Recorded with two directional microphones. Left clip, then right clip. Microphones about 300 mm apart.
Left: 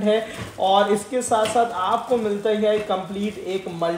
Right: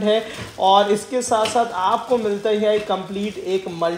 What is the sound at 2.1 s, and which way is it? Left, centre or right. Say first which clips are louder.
Speech: right 2 dB; right.